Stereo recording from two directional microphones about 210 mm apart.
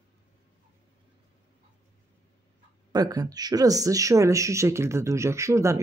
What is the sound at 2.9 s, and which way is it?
Speech, 20° right (ahead or behind).